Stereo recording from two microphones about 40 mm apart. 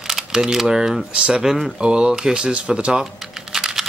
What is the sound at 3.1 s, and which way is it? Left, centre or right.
Typing, centre.